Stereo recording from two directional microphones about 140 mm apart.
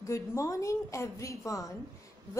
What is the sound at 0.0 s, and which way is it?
A woman's voice, 20° left (ahead or behind).